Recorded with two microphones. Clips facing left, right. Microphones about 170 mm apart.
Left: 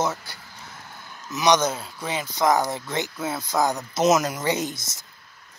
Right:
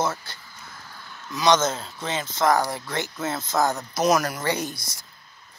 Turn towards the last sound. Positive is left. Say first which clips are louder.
# left 2 dB
turn(degrees=20)  # may be behind; listen again after turning